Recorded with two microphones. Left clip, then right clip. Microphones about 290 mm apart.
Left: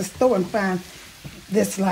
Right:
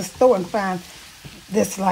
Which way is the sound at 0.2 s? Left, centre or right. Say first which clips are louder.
Right 3 dB; right.